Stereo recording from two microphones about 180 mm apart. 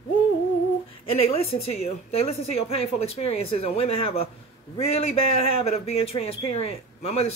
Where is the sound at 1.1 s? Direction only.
30° left (ahead or behind).